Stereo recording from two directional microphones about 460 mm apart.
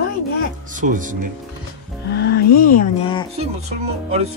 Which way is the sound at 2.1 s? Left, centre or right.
Centre.